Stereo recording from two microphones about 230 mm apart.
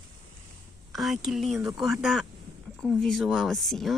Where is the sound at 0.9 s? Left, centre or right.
Centre.